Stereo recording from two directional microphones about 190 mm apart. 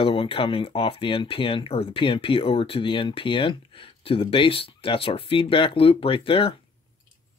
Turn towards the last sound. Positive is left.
turn(degrees=30)  # may be behind; listen again after turning